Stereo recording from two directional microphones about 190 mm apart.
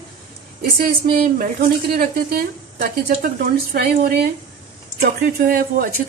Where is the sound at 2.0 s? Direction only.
50° right (ahead or behind).